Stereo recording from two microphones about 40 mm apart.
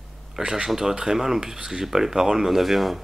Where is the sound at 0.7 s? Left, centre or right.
Centre.